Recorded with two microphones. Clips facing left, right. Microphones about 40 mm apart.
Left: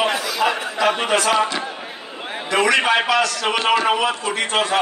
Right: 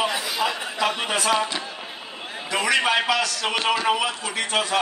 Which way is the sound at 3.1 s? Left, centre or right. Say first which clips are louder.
Left 5 dB; centre.